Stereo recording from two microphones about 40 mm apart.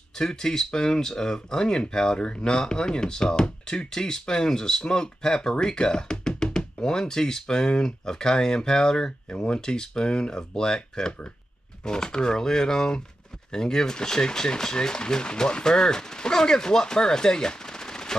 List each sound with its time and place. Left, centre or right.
0.1 s speech: centre